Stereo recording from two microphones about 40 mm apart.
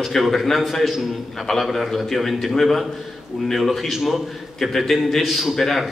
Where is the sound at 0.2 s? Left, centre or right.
Centre.